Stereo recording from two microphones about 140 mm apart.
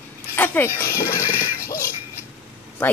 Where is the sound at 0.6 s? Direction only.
15° left (ahead or behind).